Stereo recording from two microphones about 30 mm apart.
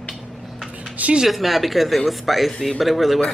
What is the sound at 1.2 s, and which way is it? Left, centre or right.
Speech, centre.